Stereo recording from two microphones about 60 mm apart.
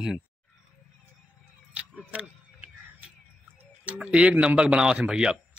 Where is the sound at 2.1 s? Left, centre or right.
Right.